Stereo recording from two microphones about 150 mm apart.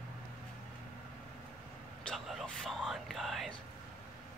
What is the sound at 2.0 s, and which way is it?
Speech, centre (ahead or behind).